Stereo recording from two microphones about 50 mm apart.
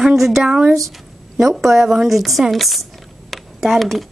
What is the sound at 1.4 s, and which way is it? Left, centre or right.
Speech, centre.